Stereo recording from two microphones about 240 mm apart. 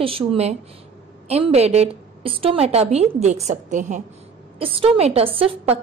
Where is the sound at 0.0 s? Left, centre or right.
Right.